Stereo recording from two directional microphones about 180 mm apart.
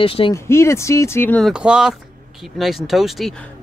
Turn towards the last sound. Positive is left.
turn(degrees=0)  # may be behind; listen again after turning